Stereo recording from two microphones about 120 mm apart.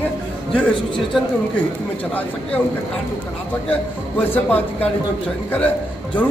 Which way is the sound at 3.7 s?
15° left (ahead or behind).